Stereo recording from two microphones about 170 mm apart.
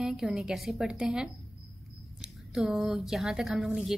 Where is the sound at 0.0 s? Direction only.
5° right (ahead or behind).